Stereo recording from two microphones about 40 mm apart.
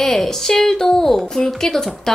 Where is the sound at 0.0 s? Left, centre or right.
Centre.